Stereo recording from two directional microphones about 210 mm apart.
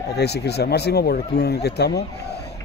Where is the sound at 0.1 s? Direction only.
50° left (ahead or behind).